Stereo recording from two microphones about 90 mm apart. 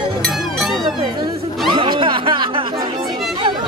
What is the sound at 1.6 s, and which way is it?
Music, 65° right (ahead or behind).